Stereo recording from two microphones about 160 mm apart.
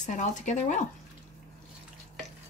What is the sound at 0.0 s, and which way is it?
Speech, 50° left (ahead or behind).